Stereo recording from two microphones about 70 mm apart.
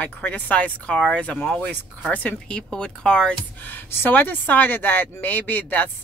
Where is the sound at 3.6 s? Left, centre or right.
Left.